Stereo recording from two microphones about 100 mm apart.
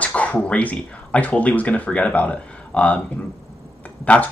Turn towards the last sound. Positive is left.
turn(degrees=15)  # may be behind; listen again after turning